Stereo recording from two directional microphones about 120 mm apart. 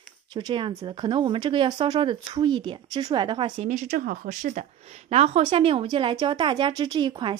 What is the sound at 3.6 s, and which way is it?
Speech, 85° right.